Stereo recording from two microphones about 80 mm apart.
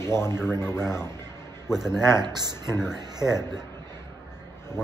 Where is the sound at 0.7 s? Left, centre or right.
Centre.